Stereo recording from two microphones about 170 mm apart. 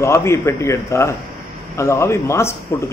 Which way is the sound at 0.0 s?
15° left (ahead or behind).